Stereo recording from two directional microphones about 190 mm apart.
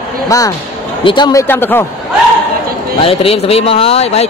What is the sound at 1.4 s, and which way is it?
Speech, 10° left (ahead or behind).